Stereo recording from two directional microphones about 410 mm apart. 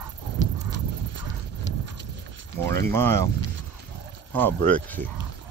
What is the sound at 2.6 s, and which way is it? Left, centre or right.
Speech, centre.